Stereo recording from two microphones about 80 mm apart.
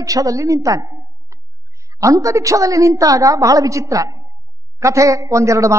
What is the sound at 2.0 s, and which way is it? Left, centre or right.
A man's voice, right.